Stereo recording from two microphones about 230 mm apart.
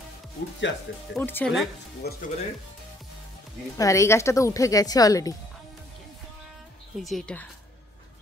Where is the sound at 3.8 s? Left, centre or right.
Centre.